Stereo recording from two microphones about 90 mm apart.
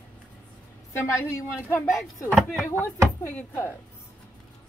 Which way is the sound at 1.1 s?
30° left (ahead or behind).